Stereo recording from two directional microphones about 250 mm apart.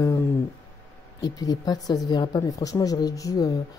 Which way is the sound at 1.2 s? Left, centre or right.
Centre.